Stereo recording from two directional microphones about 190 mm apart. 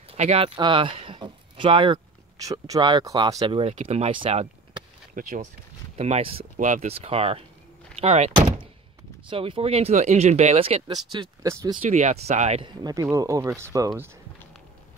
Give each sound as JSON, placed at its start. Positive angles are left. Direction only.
{"t": 0.1, "sound": "speech", "side_deg": -30}
{"t": 5.1, "sound": "speech", "side_deg": -45}
{"t": 7.9, "sound": "thunk", "side_deg": -30}
{"t": 9.3, "sound": "speech", "side_deg": -30}
{"t": 11.8, "sound": "speech", "side_deg": -35}
{"t": 12.8, "sound": "speech", "side_deg": -15}